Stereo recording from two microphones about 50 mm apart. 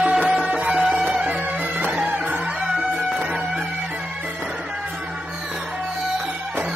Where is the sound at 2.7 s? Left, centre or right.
Centre.